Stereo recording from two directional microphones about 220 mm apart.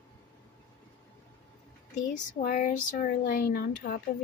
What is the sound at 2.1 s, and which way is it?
Speech, 35° left (ahead or behind).